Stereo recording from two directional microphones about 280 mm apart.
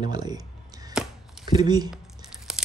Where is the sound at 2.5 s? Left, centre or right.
Centre.